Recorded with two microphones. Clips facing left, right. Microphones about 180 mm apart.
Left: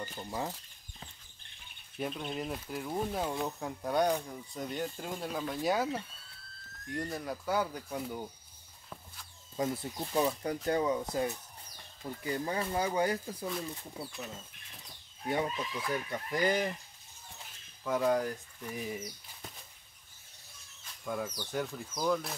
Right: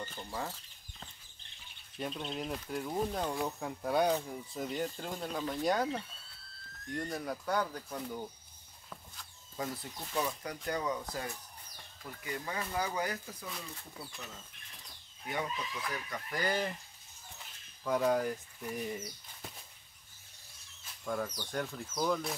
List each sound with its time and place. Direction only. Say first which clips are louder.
0.0 s speech: left 3 dB; 10° left (ahead or behind)
2.0 s speech: left 2 dB; 5° left (ahead or behind)
9.6 s speech: left 6 dB; 20° left (ahead or behind)
15.2 s speech: left 5 dB; 30° left (ahead or behind)
17.8 s speech: left 1 dB; centre (ahead or behind)
21.0 s speech: even; 5° left (ahead or behind)